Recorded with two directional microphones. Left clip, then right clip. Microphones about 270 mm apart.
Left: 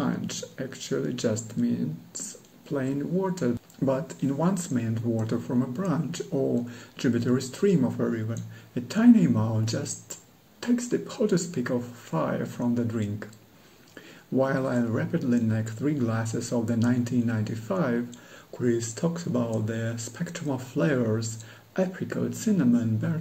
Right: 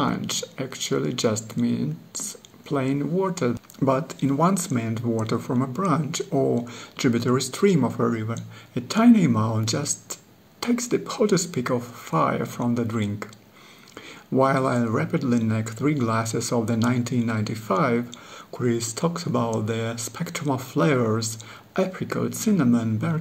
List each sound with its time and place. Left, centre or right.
0.0 s speech: right
14.4 s speech: right